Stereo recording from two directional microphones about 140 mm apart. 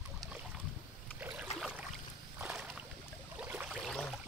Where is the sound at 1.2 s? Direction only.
15° right (ahead or behind).